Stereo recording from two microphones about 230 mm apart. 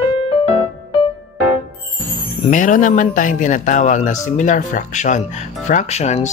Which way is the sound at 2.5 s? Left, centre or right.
Left.